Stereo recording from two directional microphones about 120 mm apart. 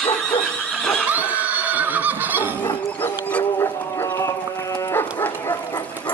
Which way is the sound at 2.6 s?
15° left (ahead or behind).